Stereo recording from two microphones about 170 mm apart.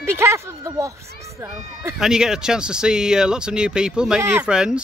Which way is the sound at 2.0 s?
5° right (ahead or behind).